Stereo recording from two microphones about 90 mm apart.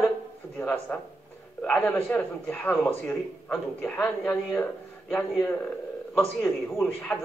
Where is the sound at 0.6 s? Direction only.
15° left (ahead or behind).